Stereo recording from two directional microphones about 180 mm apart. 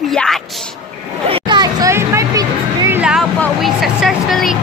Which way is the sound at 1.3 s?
25° right (ahead or behind).